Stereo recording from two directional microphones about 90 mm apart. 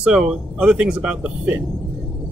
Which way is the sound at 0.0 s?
10° right (ahead or behind).